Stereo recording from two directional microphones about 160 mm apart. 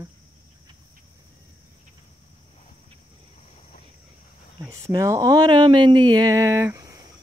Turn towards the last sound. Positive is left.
turn(degrees=-20)  # may be behind; listen again after turning